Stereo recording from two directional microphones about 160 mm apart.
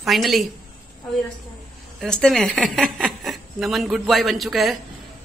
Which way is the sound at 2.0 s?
5° left (ahead or behind).